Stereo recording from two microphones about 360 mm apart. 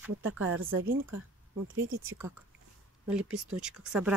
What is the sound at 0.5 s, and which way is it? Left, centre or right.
Speech, right.